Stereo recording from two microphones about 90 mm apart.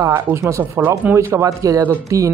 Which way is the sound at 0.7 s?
20° right (ahead or behind).